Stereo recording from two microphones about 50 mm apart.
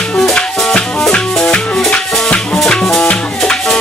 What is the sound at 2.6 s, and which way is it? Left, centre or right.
Music, centre.